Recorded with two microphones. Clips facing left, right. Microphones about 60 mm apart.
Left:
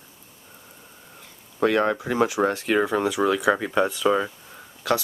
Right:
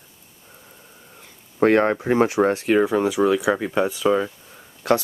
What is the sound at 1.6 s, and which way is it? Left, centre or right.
Speech, right.